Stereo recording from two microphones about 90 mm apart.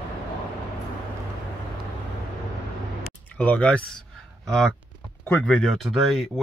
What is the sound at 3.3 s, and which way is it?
Speech, 15° left (ahead or behind).